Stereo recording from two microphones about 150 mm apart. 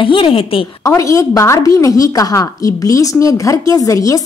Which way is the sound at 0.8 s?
20° left (ahead or behind).